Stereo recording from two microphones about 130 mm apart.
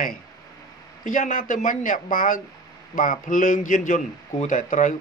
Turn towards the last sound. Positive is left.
turn(degrees=85)